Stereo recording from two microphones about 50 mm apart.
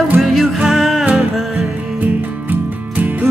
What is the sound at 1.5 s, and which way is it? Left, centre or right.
Music, right.